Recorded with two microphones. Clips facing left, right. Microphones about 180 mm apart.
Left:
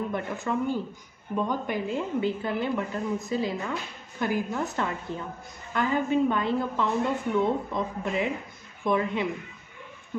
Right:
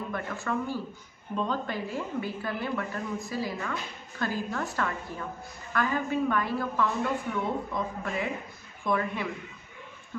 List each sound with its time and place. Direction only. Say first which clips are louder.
0.1 s a woman's voice: left 3 dB; 20° left (ahead or behind)